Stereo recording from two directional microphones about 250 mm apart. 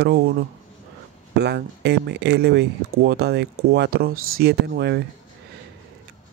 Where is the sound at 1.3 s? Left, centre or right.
Right.